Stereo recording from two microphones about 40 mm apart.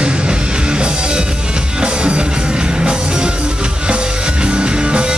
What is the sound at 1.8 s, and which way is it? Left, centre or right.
Music, right.